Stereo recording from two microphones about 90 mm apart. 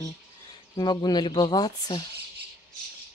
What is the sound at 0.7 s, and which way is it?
Speech, 50° left (ahead or behind).